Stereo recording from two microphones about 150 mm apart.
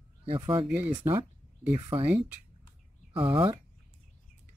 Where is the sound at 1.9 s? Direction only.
35° right (ahead or behind).